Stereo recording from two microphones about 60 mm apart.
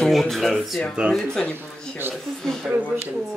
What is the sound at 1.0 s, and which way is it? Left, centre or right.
Speech, centre.